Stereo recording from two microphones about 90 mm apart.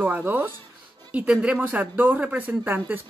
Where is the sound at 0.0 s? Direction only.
20° right (ahead or behind).